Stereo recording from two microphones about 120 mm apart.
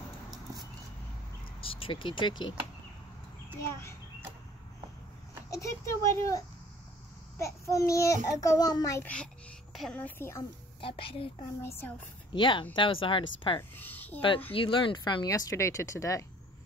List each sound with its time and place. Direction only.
1.6 s speech: 50° left (ahead or behind)
5.5 s a child's voice: 25° left (ahead or behind)
9.0 s a woman's voice: 10° left (ahead or behind)
9.7 s a sound: centre (ahead or behind)
9.9 s a woman's voice: 15° left (ahead or behind)
10.8 s speech: 45° left (ahead or behind)
12.3 s speech: 40° left (ahead or behind)
13.6 s a woman's voice: 15° left (ahead or behind)
14.5 s speech: 45° left (ahead or behind)
15.2 s a child's voice: 25° left (ahead or behind)